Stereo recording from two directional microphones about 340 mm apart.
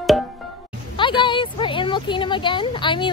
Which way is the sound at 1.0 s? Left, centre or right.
Centre.